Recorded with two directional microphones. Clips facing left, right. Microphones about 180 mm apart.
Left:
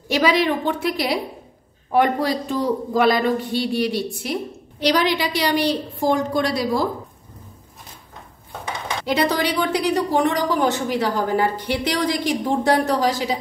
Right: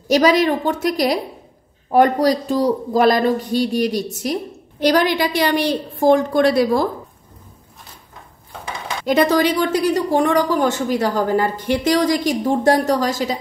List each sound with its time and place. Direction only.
0.1 s a woman's voice: 40° right (ahead or behind)
9.0 s a woman's voice: 45° right (ahead or behind)